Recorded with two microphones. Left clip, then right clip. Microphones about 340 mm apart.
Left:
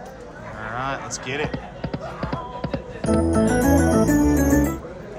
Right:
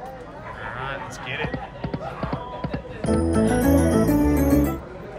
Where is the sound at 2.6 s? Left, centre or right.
Centre.